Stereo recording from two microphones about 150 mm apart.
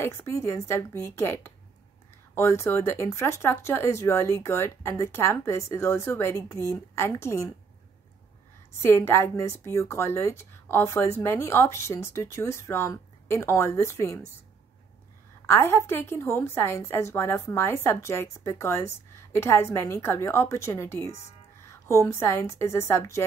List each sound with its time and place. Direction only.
0.0 s a woman's voice: 20° left (ahead or behind)
8.8 s a woman's voice: 15° left (ahead or behind)
15.4 s a woman's voice: 15° left (ahead or behind)